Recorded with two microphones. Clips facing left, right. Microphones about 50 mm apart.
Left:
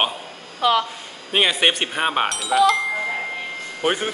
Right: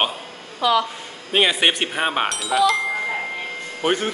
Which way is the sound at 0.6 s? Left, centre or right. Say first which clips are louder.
Even; left.